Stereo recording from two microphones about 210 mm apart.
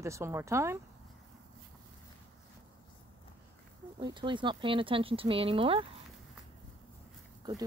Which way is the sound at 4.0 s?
20° right (ahead or behind).